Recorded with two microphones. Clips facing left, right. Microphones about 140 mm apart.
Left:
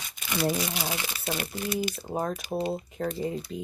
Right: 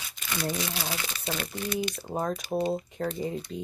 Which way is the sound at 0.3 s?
15° left (ahead or behind).